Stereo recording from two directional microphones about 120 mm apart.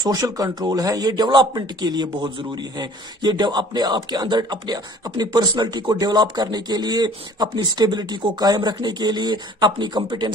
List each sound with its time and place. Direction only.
0.0 s speech: 30° right (ahead or behind)